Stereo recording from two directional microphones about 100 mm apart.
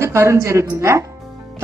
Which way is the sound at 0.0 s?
25° right (ahead or behind).